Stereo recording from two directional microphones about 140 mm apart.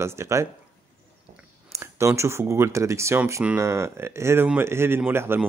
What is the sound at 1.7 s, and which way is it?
Speech, 20° right (ahead or behind).